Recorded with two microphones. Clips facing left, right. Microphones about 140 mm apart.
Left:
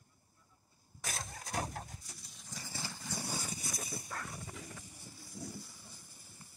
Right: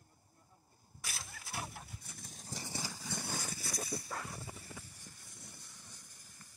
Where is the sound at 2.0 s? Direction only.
55° right (ahead or behind).